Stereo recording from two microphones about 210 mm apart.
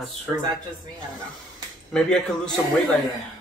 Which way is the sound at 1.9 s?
Centre (ahead or behind).